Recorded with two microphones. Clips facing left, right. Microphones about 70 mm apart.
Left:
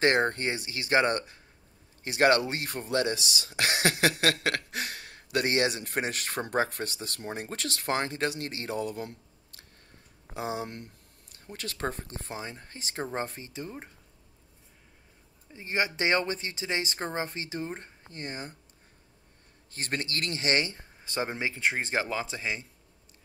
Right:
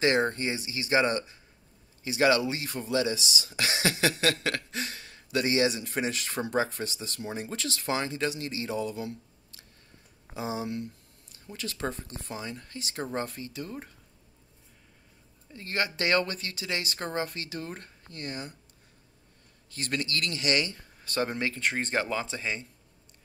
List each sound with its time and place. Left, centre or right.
0.0 s speech: left
15.5 s speech: centre
19.7 s speech: left
21.1 s speech: centre